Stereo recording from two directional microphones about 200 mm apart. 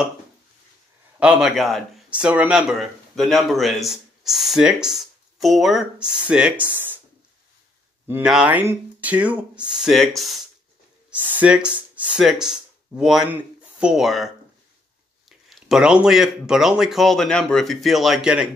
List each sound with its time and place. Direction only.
1.2 s speech: centre (ahead or behind)
8.1 s speech: 5° right (ahead or behind)